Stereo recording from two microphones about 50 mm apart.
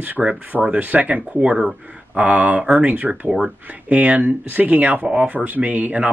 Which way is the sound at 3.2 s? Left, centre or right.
Centre.